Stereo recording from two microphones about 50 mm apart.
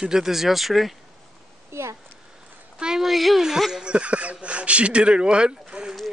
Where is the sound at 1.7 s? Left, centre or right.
Right.